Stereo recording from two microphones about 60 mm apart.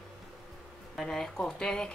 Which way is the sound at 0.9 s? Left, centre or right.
Centre.